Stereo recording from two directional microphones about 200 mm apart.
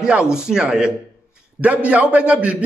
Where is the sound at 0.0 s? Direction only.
5° right (ahead or behind).